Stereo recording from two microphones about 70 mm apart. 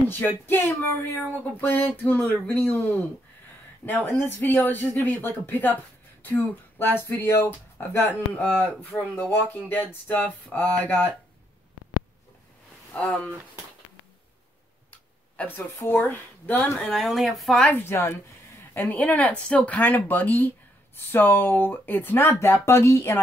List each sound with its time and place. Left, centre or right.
0.5 s speech: left
1.6 s speech: left
3.8 s speech: left
8.3 s speech: centre
12.9 s speech: centre
14.9 s tick-tock: left
16.0 s speech: left
16.9 s speech: centre
17.6 s speech: left
17.8 s speech: left